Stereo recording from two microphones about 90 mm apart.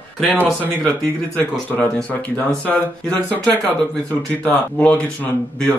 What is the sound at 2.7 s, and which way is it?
Speech, 15° left (ahead or behind).